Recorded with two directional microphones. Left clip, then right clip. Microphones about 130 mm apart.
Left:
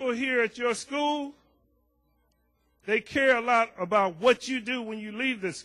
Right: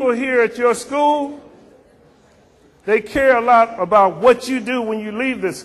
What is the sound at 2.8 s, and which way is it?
A man's voice, 35° left (ahead or behind).